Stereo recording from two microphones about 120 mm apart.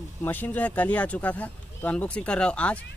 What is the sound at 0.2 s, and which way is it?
Speech, 15° left (ahead or behind).